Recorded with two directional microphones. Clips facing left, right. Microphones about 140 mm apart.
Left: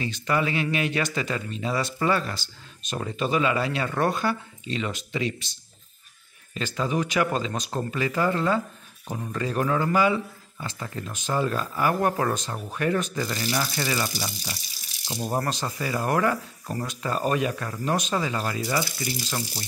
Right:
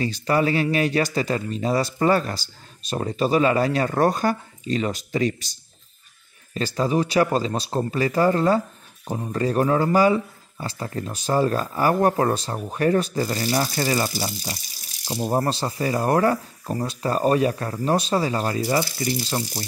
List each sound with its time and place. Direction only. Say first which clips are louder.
0.0 s speech: right 5 dB; 35° right (ahead or behind)
6.5 s speech: right 5 dB; 35° right (ahead or behind)